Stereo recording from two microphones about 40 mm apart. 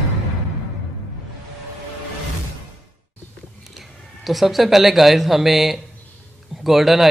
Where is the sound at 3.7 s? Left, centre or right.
Centre.